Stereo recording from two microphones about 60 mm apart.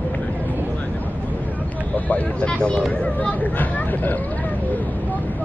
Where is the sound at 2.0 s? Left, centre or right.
Left.